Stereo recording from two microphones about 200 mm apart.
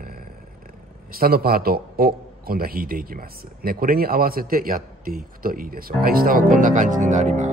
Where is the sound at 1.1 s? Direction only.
50° right (ahead or behind).